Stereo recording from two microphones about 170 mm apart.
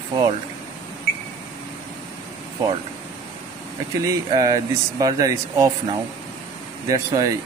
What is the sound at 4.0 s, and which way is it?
Speech, 20° right (ahead or behind).